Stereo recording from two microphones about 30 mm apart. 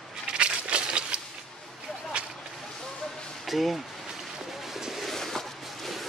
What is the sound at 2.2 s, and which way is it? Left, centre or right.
Whip, right.